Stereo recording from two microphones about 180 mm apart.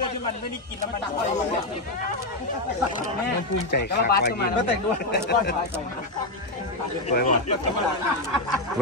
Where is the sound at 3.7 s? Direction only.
65° left (ahead or behind).